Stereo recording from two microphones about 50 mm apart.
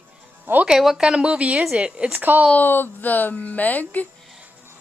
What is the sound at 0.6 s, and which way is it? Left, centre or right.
Speech, centre.